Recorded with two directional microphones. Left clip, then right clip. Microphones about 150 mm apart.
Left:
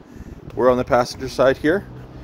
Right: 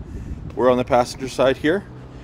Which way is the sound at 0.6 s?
45° right (ahead or behind).